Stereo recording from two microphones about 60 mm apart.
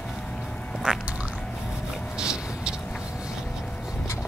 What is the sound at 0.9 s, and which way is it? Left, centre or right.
Duck, centre.